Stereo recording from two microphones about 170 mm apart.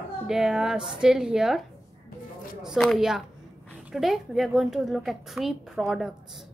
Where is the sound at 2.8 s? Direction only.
Centre (ahead or behind).